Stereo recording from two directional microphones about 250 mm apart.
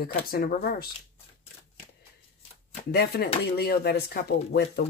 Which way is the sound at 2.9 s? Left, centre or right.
Left.